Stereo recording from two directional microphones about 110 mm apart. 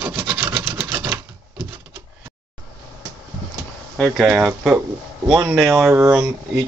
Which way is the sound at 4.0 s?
Centre (ahead or behind).